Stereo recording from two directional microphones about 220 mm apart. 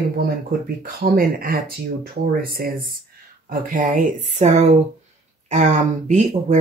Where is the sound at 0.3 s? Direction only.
45° right (ahead or behind).